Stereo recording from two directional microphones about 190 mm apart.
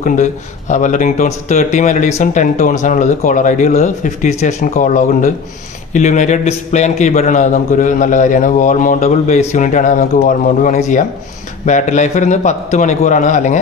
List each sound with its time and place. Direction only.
0.0 s speech: 40° left (ahead or behind)